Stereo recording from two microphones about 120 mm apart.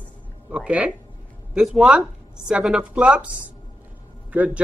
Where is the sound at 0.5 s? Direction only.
10° right (ahead or behind).